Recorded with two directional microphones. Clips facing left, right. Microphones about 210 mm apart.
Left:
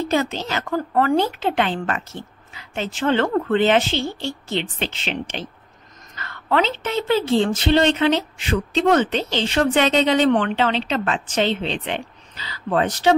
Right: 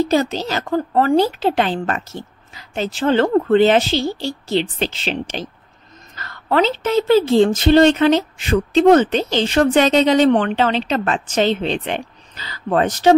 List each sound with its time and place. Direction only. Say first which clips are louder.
0.0 s a woman's voice: right 4 dB; 35° right (ahead or behind)